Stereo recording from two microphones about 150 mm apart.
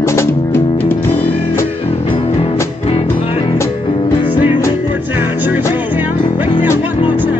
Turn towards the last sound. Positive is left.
turn(degrees=-10)  # may be behind; listen again after turning